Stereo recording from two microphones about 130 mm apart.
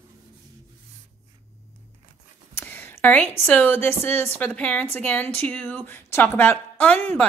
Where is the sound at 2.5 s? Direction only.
15° left (ahead or behind).